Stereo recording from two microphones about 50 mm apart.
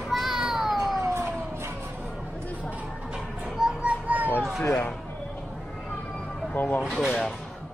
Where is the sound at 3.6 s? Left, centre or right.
Centre.